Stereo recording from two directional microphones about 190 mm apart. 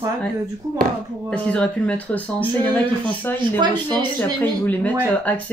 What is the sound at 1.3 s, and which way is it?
Speech, 5° left (ahead or behind).